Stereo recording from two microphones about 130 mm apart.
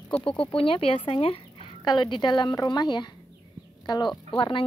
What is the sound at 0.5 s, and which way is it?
A woman's voice, 45° left (ahead or behind).